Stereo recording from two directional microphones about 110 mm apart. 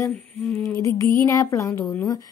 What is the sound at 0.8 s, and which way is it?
Speech, 25° left (ahead or behind).